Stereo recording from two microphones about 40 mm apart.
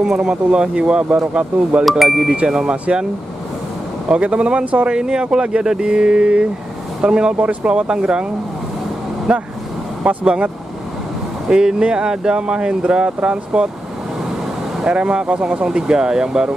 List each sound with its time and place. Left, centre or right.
0.0 s speech: centre
1.9 s speech: centre
2.5 s speech: right
4.1 s speech: right
4.8 s speech: centre
9.3 s speech: right
14.8 s speech: right